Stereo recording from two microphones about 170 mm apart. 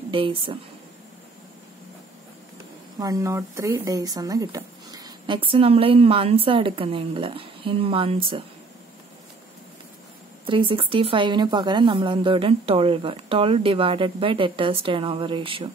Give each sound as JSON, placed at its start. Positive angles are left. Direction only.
{"t": 0.1, "sound": "speech", "side_deg": -30}
{"t": 3.0, "sound": "speech", "side_deg": -20}
{"t": 10.4, "sound": "speech", "side_deg": -30}